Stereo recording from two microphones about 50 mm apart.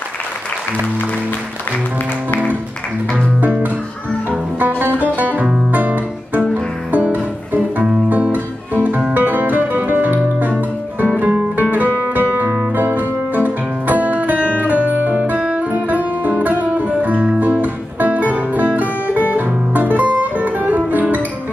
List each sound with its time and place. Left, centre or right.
3.3 s music: right
5.7 s guitar: right
6.9 s music: right